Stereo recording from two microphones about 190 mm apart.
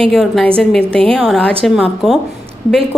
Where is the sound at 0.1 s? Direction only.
Centre (ahead or behind).